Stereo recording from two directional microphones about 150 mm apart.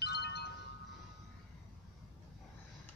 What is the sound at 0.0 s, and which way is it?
Wind chime, 90° left.